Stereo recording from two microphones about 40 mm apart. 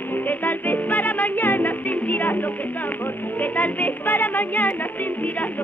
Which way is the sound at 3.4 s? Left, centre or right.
Left.